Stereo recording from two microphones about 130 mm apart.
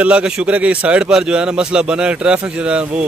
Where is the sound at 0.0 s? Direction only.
10° right (ahead or behind).